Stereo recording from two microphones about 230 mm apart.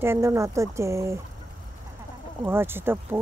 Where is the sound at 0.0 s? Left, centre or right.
Centre.